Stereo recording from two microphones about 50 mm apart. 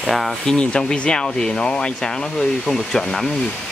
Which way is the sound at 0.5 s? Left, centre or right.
Left.